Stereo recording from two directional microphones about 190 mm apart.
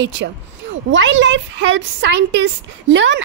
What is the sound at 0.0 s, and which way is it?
A woman's voice, 75° right (ahead or behind).